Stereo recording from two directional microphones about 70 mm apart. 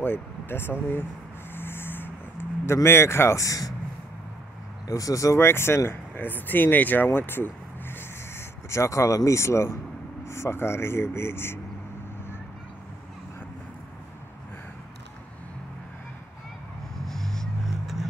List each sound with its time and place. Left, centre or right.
0.0 s speech: left
1.5 s a sound: left
2.6 s speech: left
4.8 s speech: left
7.1 s a sound: left
10.2 s speech: left
17.0 s vehicle: centre